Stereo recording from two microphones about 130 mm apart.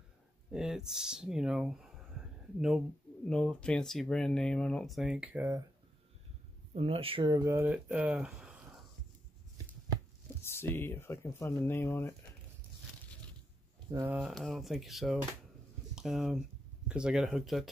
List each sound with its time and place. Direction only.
0.5 s speech: 5° right (ahead or behind)
6.7 s speech: 50° right (ahead or behind)
7.4 s speech: 15° right (ahead or behind)
10.4 s speech: 20° left (ahead or behind)
14.2 s speech: centre (ahead or behind)